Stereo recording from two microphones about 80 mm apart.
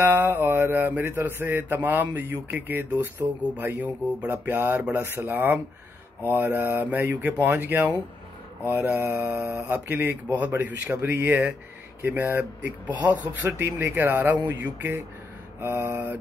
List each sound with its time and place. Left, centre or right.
0.0 s speech: right
13.5 s speech: right